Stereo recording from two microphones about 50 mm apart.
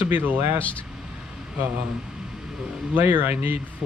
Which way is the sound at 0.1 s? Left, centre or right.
Right.